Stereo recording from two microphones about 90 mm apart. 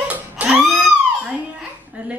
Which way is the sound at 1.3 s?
15° right (ahead or behind).